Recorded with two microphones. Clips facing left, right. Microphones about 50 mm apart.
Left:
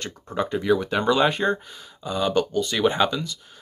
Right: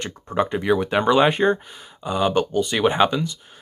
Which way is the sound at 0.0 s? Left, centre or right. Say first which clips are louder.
Right 4 dB; centre.